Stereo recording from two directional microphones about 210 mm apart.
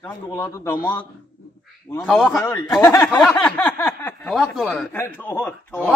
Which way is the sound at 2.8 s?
15° left (ahead or behind).